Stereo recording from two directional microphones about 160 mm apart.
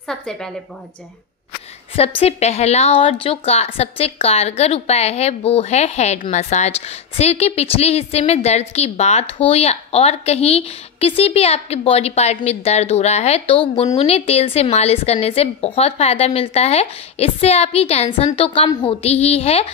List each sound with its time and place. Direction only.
0.1 s a woman's voice: 5° left (ahead or behind)
2.0 s a woman's voice: 40° left (ahead or behind)
19.0 s a woman's voice: 40° left (ahead or behind)